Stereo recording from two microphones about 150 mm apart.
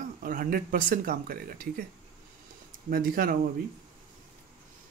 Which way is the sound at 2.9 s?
75° right (ahead or behind).